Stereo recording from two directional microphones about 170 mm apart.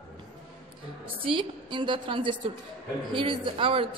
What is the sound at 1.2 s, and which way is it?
A woman's voice, 30° right (ahead or behind).